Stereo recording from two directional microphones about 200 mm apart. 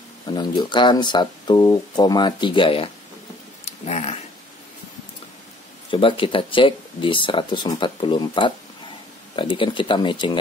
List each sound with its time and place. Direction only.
0.3 s speech: 20° left (ahead or behind)
3.6 s a sound: 35° left (ahead or behind)
5.9 s speech: 25° left (ahead or behind)